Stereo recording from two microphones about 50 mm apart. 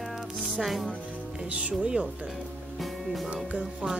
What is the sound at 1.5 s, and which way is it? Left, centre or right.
Speech, right.